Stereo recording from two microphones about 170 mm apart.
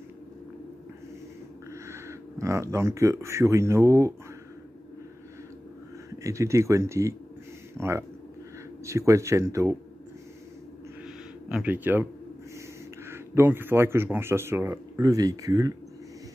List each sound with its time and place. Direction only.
1.7 s speech: 15° right (ahead or behind)
6.0 s speech: 20° right (ahead or behind)
11.4 s speech: 10° right (ahead or behind)
13.1 s speech: 15° right (ahead or behind)